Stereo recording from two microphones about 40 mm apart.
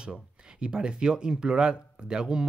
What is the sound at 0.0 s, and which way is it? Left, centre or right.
Speech, right.